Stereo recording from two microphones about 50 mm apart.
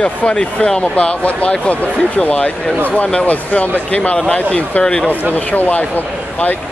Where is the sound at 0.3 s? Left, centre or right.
Centre.